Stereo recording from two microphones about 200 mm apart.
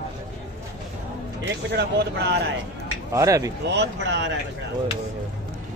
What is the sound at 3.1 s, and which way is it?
Speech, 15° right (ahead or behind).